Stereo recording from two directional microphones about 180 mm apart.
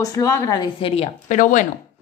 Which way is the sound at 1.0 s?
45° left (ahead or behind).